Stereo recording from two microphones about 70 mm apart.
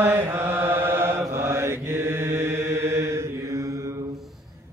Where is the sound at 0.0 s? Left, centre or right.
Right.